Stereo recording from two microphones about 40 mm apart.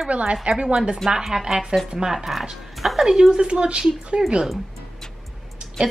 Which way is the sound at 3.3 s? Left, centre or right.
Right.